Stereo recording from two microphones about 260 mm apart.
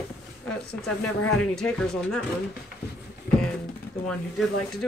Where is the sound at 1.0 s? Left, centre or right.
Left.